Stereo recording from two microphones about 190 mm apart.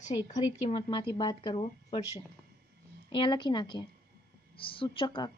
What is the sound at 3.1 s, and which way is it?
Speech, 25° left (ahead or behind).